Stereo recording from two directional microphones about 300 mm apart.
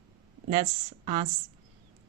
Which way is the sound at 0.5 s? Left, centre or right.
Centre.